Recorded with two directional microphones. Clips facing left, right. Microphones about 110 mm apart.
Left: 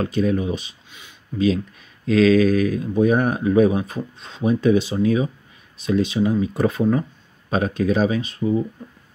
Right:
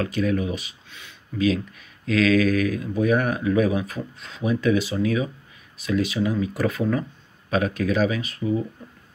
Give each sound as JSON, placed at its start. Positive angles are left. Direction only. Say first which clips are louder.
{"t": 0.0, "sound": "speech", "louder": "left 3 dB", "side_deg": 30}
{"t": 2.0, "sound": "speech", "louder": "left 4 dB", "side_deg": 30}